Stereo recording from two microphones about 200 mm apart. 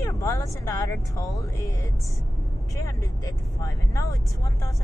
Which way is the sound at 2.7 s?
15° left (ahead or behind).